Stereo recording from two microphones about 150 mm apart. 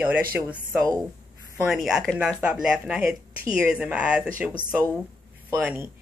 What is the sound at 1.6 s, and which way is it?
Speech, 5° right (ahead or behind).